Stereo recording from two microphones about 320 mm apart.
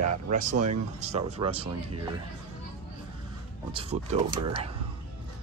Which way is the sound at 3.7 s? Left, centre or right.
Centre.